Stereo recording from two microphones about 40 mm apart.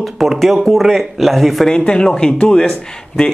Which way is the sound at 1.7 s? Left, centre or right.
Left.